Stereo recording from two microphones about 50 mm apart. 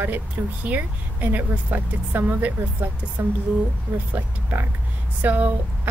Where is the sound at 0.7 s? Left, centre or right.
Right.